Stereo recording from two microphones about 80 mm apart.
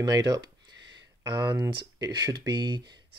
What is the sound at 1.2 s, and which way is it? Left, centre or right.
Speech, right.